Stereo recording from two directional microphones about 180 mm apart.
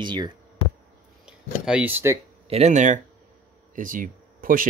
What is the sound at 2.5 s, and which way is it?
Speech, 40° right (ahead or behind).